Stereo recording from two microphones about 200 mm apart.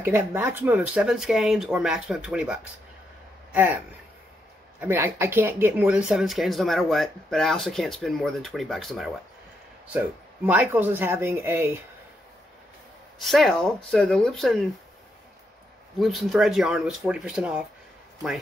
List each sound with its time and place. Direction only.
0.0 s speech: 10° right (ahead or behind)
13.2 s speech: centre (ahead or behind)
16.0 s speech: centre (ahead or behind)